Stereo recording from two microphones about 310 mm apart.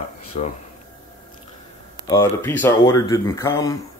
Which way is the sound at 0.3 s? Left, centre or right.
Left.